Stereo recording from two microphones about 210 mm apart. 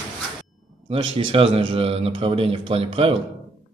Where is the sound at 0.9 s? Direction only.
25° right (ahead or behind).